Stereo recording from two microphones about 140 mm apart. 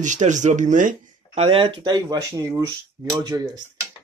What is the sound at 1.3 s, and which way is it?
Speech, 40° right (ahead or behind).